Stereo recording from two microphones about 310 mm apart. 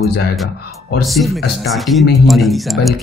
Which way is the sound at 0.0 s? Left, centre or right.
Left.